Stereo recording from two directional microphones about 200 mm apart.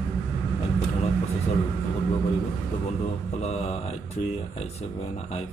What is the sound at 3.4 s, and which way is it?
Speech, 30° left (ahead or behind).